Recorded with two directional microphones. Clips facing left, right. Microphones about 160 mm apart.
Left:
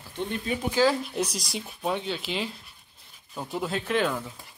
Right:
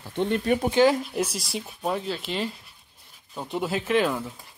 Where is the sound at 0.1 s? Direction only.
60° right (ahead or behind).